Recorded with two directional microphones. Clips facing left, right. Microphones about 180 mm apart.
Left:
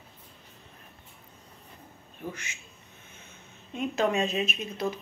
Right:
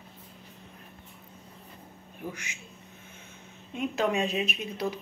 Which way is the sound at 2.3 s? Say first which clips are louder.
Left 1 dB; 10° right (ahead or behind).